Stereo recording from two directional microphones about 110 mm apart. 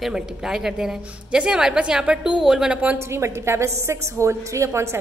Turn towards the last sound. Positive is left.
turn(degrees=-25)  # may be behind; listen again after turning